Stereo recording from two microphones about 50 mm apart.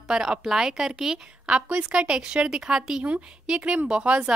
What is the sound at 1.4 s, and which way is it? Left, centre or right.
A woman's voice, right.